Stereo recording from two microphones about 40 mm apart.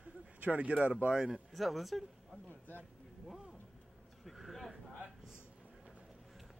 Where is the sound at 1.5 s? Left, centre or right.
Centre.